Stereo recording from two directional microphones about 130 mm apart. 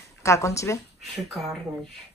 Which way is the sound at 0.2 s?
25° left (ahead or behind).